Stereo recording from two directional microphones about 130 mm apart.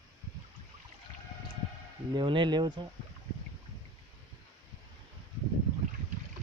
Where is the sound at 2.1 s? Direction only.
40° right (ahead or behind).